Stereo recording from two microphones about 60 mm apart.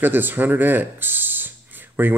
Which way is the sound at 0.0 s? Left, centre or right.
Right.